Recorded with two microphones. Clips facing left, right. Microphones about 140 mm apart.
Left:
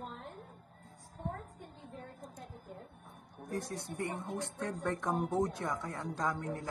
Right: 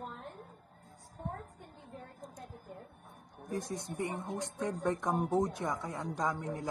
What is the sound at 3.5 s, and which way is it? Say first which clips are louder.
Speech: right 1 dB; 15° right (ahead or behind).